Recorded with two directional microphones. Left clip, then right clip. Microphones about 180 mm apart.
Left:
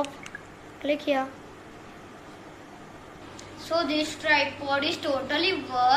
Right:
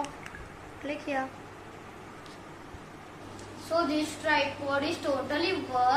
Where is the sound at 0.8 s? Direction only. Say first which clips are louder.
Left 7 dB; 60° left (ahead or behind).